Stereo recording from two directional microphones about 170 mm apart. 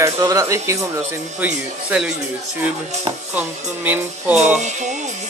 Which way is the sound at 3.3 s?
10° right (ahead or behind).